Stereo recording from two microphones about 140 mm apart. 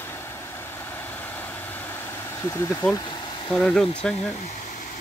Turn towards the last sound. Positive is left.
turn(degrees=5)  # may be behind; listen again after turning